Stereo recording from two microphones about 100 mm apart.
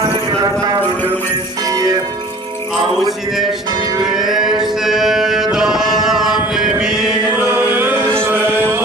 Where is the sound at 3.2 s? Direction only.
5° right (ahead or behind).